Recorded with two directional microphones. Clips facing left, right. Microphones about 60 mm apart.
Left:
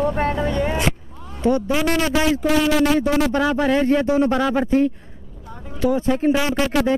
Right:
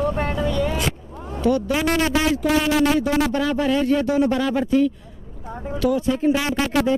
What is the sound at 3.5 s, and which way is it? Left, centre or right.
A man's voice, left.